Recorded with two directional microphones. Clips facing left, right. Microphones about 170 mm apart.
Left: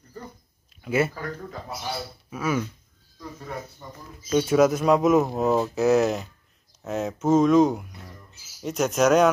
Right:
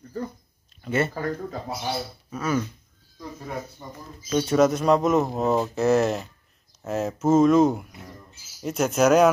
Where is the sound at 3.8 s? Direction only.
20° right (ahead or behind).